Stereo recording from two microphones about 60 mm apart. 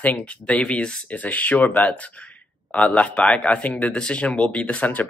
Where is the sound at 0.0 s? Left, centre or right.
Left.